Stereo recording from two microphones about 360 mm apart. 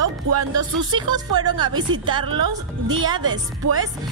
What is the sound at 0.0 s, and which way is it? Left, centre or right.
Music, right.